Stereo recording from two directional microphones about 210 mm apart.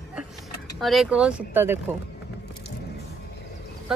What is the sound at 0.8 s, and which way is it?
Speech, centre (ahead or behind).